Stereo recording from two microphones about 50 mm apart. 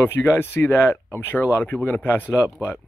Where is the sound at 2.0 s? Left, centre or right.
Left.